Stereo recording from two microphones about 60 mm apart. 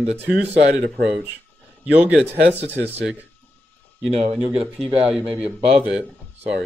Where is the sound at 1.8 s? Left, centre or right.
Right.